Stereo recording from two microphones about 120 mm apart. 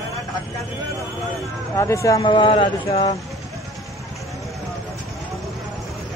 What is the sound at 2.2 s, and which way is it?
Speech, 40° left (ahead or behind).